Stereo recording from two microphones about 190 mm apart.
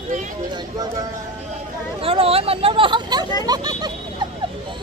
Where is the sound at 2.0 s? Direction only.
30° right (ahead or behind).